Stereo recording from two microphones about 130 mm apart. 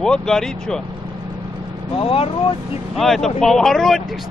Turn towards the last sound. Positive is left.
turn(degrees=0)  # may be behind; listen again after turning